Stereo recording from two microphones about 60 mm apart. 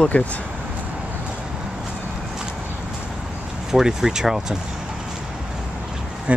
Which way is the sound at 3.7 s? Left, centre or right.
Centre.